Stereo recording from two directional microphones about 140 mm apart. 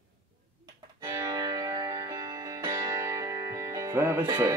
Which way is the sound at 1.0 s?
25° right (ahead or behind).